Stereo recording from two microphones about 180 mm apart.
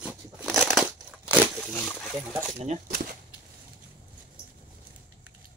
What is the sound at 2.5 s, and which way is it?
Speech, 40° right (ahead or behind).